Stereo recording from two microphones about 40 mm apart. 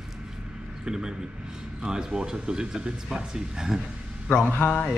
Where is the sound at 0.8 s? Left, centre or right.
Centre.